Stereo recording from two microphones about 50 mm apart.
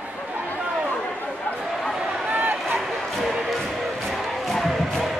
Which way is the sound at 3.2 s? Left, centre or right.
Centre.